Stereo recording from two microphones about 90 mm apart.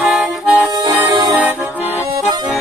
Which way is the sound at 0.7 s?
50° right (ahead or behind).